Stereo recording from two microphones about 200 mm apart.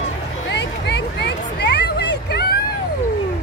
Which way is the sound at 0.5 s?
60° left (ahead or behind).